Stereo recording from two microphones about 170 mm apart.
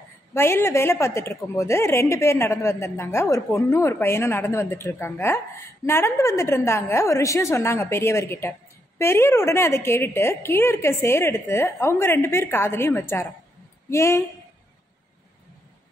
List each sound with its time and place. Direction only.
0.3 s a woman's voice: 15° left (ahead or behind)